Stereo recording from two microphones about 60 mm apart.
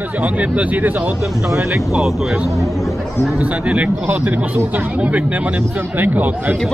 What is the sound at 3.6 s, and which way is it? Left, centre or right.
Speech, right.